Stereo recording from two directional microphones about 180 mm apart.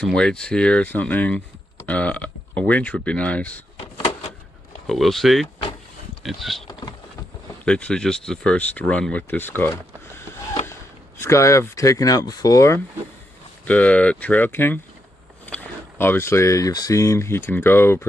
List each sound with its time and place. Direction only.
0.0 s speech: 5° left (ahead or behind)
4.8 s speech: centre (ahead or behind)
6.7 s a sound: 25° left (ahead or behind)
7.6 s speech: 5° left (ahead or behind)